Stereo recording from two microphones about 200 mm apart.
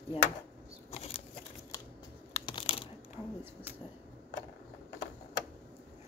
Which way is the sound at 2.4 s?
25° left (ahead or behind).